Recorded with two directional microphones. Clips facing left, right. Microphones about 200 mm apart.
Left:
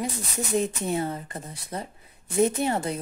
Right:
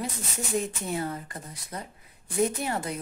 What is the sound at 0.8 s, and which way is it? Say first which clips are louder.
A woman's voice: left 4 dB; 25° left (ahead or behind).